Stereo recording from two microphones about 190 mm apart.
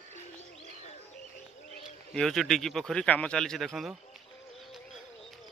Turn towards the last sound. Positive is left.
turn(degrees=0)  # may be behind; listen again after turning